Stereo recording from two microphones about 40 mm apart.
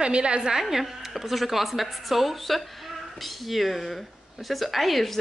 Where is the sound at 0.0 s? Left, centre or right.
Right.